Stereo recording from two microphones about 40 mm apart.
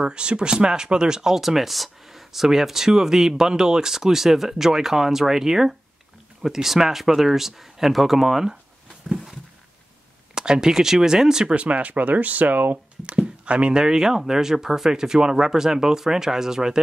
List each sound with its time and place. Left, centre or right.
0.0 s speech: right; by 8.5 s centre
10.3 s speech: centre
11.5 s speech: right
13.0 s speech: right
13.8 s speech: centre